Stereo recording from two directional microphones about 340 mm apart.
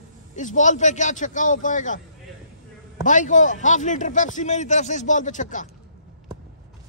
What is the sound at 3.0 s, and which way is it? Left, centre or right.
A man's voice, left.